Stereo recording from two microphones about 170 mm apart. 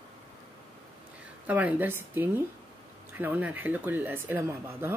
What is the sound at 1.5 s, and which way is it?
Speech, 10° right (ahead or behind).